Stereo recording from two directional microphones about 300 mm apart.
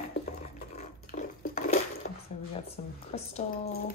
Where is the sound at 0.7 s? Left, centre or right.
Left.